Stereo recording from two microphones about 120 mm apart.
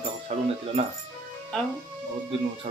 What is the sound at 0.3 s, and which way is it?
Speech, 55° right (ahead or behind).